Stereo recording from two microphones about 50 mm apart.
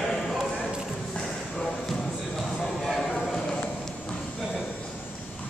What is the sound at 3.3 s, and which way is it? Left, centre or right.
Clip-clop, centre.